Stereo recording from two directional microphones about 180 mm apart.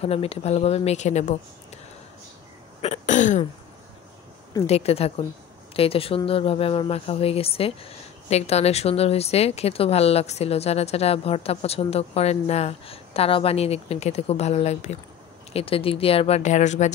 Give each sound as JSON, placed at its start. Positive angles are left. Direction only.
{"t": 0.0, "sound": "speech", "side_deg": 35}
{"t": 2.8, "sound": "speech", "side_deg": 40}
{"t": 4.6, "sound": "speech", "side_deg": 35}